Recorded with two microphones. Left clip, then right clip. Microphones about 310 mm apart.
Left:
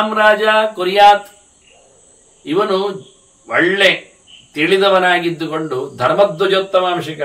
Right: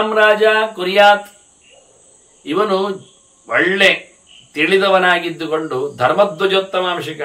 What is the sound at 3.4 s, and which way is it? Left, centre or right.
A man's voice, centre.